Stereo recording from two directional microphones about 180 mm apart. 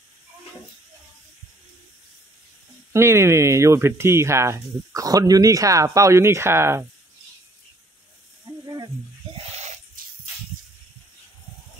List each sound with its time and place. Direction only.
2.9 s speech: 15° right (ahead or behind)
8.6 s sizzle: 20° right (ahead or behind)
9.3 s a sound: 35° right (ahead or behind)